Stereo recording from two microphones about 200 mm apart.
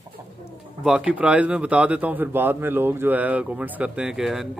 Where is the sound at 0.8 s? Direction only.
5° right (ahead or behind).